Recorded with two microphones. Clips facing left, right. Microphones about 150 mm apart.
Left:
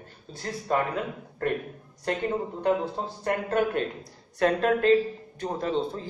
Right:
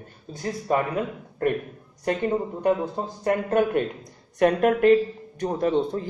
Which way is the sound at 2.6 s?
15° right (ahead or behind).